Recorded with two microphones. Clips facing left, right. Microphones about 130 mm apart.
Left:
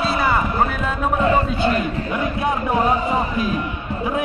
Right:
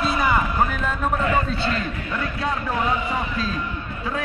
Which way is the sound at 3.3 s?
15° left (ahead or behind).